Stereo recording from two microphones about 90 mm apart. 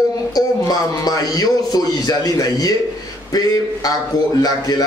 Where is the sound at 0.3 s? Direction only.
45° left (ahead or behind).